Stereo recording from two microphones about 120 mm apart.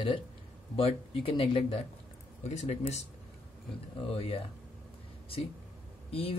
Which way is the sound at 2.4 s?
65° left (ahead or behind).